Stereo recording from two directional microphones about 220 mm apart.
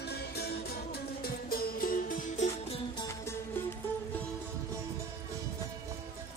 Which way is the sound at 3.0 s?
10° left (ahead or behind).